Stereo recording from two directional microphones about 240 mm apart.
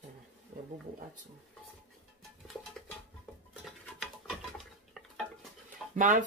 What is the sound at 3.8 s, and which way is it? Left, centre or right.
Patter, centre.